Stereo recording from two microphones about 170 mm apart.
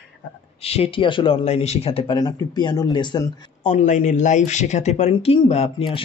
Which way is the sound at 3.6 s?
45° left (ahead or behind).